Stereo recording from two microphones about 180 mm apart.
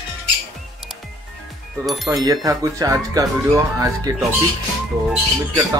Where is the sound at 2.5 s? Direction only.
20° right (ahead or behind).